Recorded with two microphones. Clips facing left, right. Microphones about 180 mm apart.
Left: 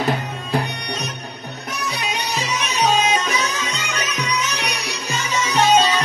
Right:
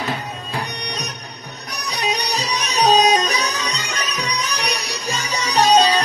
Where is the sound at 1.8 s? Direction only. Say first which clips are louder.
Right 3 dB; 40° right (ahead or behind).